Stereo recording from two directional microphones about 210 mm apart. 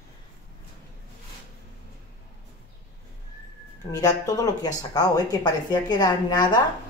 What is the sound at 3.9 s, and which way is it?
Speech, 15° left (ahead or behind).